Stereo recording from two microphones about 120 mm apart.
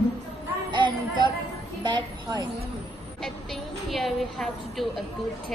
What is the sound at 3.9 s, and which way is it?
A woman's voice, centre (ahead or behind).